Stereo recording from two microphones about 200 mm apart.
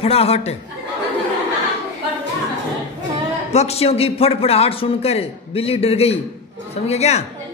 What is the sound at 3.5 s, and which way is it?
A man's voice, 30° left (ahead or behind).